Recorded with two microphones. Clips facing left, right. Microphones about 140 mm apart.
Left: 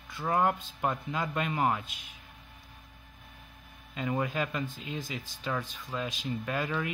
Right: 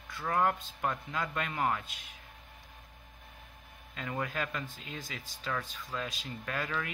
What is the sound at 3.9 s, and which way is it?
Speech, 15° left (ahead or behind).